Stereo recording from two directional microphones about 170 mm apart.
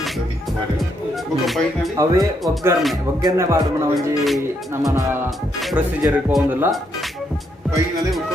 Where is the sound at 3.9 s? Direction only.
Centre (ahead or behind).